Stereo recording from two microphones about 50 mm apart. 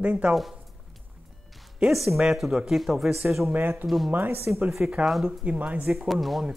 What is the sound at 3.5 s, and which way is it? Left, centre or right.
Speech, right.